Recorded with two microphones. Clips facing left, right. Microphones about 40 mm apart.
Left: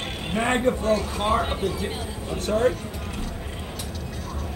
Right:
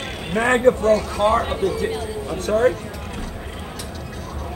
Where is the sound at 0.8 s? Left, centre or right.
Right.